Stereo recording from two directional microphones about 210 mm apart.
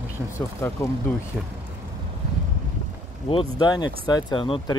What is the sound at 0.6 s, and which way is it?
Speech, 10° left (ahead or behind).